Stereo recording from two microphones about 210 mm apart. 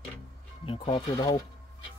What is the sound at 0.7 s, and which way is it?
Speech, 20° left (ahead or behind).